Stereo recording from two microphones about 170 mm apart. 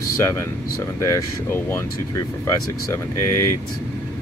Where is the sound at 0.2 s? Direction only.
15° left (ahead or behind).